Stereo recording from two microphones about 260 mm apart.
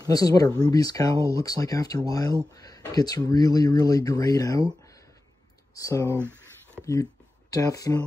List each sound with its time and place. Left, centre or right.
0.0 s speech: centre
5.8 s speech: centre